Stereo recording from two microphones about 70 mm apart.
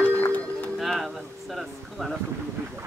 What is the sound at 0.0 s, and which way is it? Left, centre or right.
Music, left.